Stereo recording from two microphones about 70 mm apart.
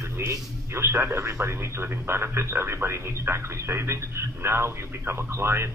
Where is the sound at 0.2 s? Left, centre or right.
Right.